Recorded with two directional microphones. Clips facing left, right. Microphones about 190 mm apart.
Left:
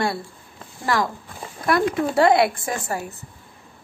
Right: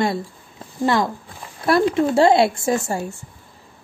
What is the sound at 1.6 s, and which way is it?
Speech, 30° right (ahead or behind).